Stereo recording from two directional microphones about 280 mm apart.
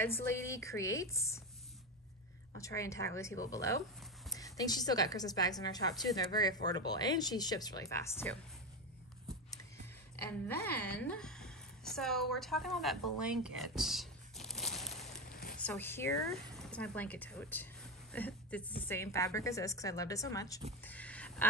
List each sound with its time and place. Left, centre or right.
0.0 s a woman's voice: centre
2.6 s a woman's voice: centre
10.5 s a woman's voice: centre
13.2 s crumpling: centre
15.1 s zipper: left
15.5 s a woman's voice: centre
20.8 s a sound: centre